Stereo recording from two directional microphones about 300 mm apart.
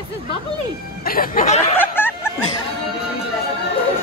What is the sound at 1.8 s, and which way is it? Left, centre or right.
Snicker, centre.